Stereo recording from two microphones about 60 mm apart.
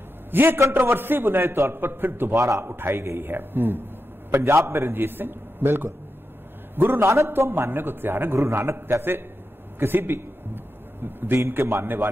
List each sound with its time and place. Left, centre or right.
0.3 s a man's voice: right
2.3 s a man's voice: right
2.6 s a man's voice: right
4.3 s a man's voice: right
6.7 s a sound: right
7.0 s a man's voice: right
7.2 s a man's voice: right
9.8 s a sound: right
11.5 s a man's voice: right